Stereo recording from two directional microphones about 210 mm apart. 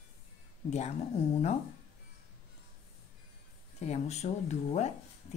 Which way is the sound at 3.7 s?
30° left (ahead or behind).